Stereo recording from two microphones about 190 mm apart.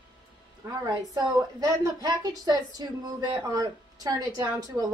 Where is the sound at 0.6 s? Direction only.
15° right (ahead or behind).